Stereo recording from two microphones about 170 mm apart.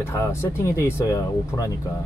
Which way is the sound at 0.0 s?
15° left (ahead or behind).